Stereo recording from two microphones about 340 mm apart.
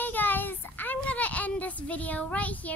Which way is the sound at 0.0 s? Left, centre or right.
Centre.